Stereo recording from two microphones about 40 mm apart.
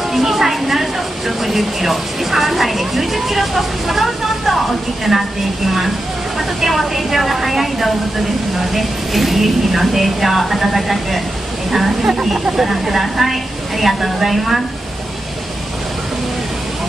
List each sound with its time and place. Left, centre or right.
0.1 s speech: centre
6.6 s speech: centre
12.0 s speech: centre
12.5 s speech: centre